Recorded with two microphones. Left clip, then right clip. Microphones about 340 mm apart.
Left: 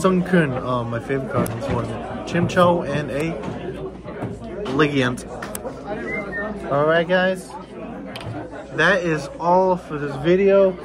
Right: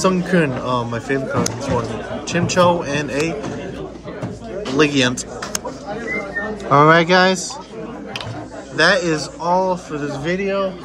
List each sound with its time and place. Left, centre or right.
0.0 s a man's voice: centre
4.7 s a man's voice: centre
6.7 s speech: right
8.7 s a man's voice: centre